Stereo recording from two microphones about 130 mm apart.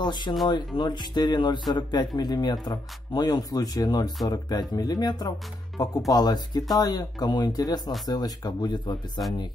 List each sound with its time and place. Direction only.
0.0 s speech: 35° left (ahead or behind)